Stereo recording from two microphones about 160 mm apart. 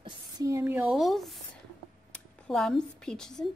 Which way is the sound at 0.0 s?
30° right (ahead or behind).